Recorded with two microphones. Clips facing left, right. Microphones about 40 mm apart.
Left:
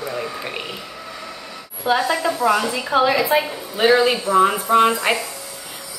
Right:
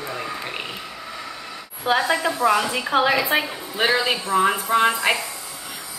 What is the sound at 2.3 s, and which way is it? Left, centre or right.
A woman's voice, centre.